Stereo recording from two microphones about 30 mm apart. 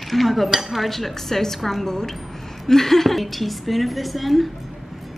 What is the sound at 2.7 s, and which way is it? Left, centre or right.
A woman's voice, centre.